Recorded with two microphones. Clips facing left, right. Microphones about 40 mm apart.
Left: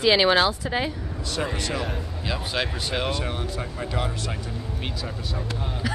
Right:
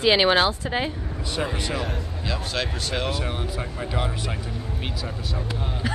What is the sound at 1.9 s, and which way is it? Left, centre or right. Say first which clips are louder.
Speech: even; centre.